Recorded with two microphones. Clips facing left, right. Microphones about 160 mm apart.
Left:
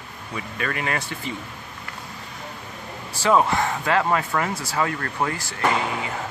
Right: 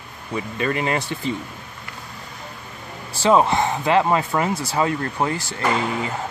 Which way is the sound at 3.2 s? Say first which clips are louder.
Right 3 dB; 20° right (ahead or behind).